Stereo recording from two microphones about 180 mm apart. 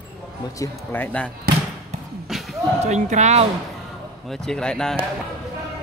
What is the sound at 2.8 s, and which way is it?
Speech, 40° right (ahead or behind).